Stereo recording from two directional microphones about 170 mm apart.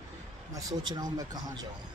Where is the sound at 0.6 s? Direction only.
25° right (ahead or behind).